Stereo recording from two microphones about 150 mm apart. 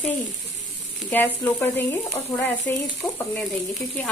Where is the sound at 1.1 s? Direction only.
15° left (ahead or behind).